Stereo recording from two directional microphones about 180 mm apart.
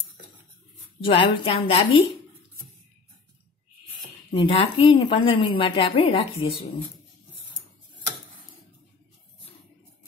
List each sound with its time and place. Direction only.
1.0 s a woman's voice: 30° left (ahead or behind)
4.3 s a woman's voice: 30° left (ahead or behind)